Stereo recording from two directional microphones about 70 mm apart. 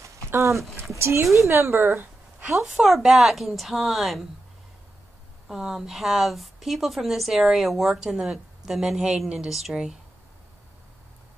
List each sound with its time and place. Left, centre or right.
0.3 s speech: right
2.5 s a woman's voice: centre
5.5 s a woman's voice: centre